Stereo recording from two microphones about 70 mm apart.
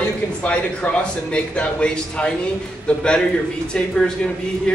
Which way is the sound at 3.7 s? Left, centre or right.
Centre.